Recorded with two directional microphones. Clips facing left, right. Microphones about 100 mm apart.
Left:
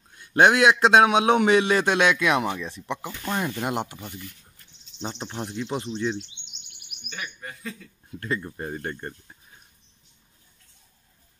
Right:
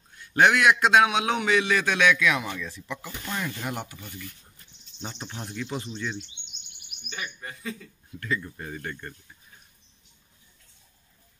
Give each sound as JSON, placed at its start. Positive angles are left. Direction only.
{"t": 0.3, "sound": "a man's voice", "side_deg": 25}
{"t": 7.2, "sound": "speech", "side_deg": 0}
{"t": 8.2, "sound": "speech", "side_deg": 35}